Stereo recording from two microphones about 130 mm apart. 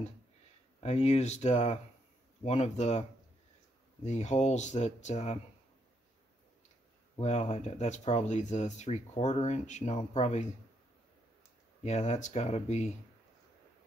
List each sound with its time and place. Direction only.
0.7 s speech: 55° left (ahead or behind)
7.2 s speech: 60° left (ahead or behind)
11.8 s speech: 60° left (ahead or behind)